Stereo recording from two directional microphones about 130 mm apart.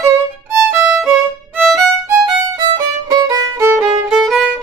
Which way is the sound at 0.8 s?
10° right (ahead or behind).